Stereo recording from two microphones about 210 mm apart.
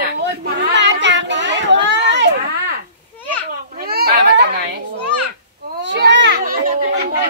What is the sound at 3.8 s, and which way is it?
Children playing, 50° right (ahead or behind).